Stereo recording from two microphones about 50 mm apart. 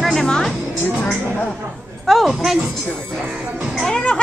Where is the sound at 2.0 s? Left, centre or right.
Centre.